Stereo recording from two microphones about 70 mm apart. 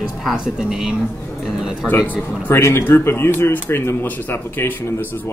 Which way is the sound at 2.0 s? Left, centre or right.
Left.